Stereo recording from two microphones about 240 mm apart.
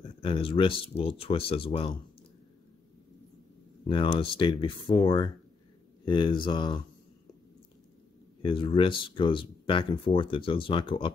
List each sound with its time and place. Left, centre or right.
0.2 s speech: left
3.8 s speech: centre
8.4 s speech: left